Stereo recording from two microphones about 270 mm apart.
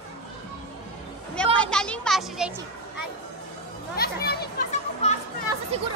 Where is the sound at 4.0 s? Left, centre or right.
Left.